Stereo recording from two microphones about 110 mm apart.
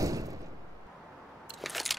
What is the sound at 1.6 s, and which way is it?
Biting, centre (ahead or behind).